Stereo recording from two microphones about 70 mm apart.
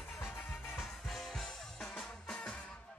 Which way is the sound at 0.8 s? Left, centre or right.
Centre.